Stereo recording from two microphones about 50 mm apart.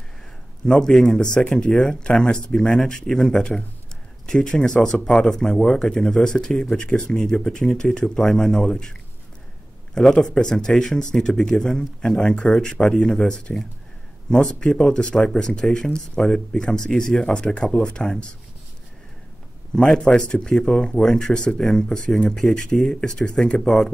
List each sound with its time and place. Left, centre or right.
0.7 s speech: centre
2.7 s speech: centre
9.9 s speech: centre
12.2 s speech: centre
19.7 s speech: centre